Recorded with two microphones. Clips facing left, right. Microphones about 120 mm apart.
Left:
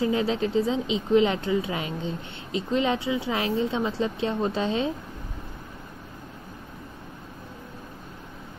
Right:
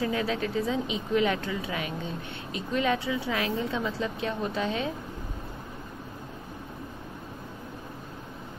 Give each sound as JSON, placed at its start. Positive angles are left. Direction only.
{"t": 0.0, "sound": "speech", "side_deg": 25}